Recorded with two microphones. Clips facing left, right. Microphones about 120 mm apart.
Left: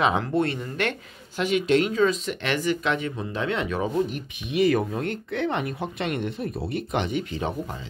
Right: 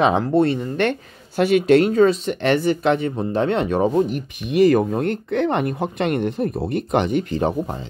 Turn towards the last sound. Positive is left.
turn(degrees=-45)  # may be behind; listen again after turning